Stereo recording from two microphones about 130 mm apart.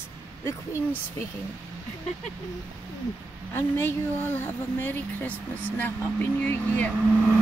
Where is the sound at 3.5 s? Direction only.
15° left (ahead or behind).